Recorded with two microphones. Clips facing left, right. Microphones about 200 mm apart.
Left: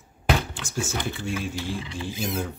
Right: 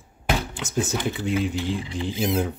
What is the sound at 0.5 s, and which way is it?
Speech, 20° right (ahead or behind).